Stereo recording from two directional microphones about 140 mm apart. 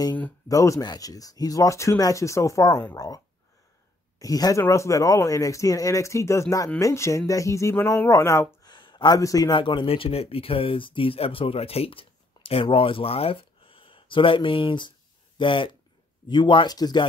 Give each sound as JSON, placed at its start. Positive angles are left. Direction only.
{"t": 0.5, "sound": "speech", "side_deg": 25}
{"t": 4.2, "sound": "speech", "side_deg": 25}
{"t": 8.6, "sound": "a sound", "side_deg": 30}
{"t": 9.5, "sound": "speech", "side_deg": 35}